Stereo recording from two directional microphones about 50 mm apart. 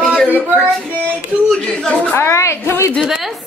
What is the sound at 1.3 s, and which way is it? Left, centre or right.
Speech, right.